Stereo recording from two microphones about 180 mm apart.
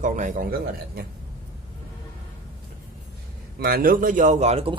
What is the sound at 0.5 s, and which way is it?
Speech, 60° right (ahead or behind).